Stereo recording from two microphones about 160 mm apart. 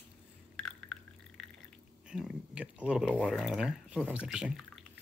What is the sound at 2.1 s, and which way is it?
Speech, 5° right (ahead or behind).